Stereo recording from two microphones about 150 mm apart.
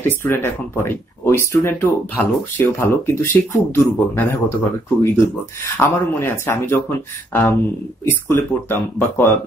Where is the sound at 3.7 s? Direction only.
15° left (ahead or behind).